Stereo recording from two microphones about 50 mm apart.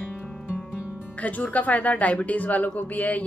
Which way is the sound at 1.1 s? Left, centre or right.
Left.